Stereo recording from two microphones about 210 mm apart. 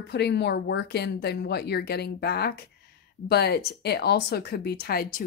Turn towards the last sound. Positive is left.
turn(degrees=45)  # may be behind; listen again after turning